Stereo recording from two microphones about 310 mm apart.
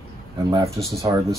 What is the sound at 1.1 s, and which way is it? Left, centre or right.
Speech, centre.